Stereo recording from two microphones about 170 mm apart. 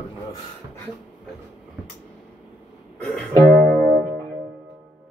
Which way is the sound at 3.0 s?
5° left (ahead or behind).